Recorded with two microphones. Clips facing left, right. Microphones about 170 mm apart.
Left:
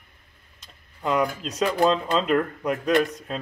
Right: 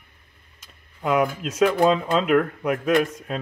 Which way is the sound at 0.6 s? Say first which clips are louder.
Right 3 dB; 5° right (ahead or behind).